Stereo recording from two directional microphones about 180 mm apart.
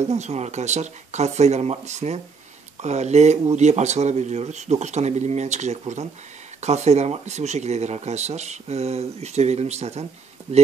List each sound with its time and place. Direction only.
0.0 s speech: 40° right (ahead or behind)